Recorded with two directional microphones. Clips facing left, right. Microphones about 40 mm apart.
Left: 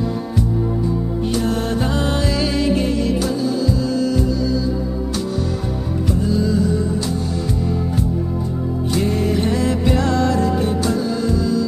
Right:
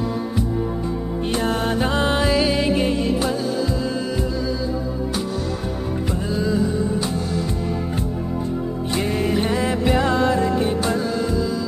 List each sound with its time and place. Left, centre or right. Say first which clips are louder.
1.2 s music: even; right
6.2 s music: left 3 dB; right
8.9 s music: left 2 dB; right